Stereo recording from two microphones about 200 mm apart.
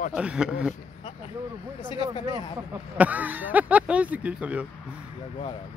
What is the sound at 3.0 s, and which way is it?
Speech, 10° right (ahead or behind).